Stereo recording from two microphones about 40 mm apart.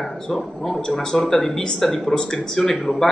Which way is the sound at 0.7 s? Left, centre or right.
Centre.